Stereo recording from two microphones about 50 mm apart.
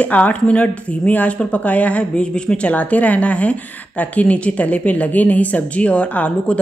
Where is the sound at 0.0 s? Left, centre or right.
Left.